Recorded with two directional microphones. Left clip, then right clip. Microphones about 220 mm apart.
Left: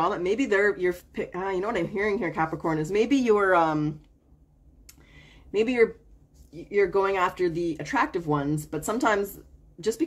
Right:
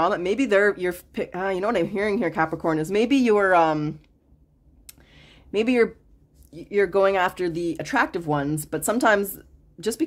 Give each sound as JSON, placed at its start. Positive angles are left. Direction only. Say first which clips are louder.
{"t": 0.0, "sound": "speech", "louder": "right 3 dB", "side_deg": -45}
{"t": 4.8, "sound": "a sound", "louder": "right 2 dB", "side_deg": -40}
{"t": 6.5, "sound": "speech", "louder": "right 2 dB", "side_deg": -45}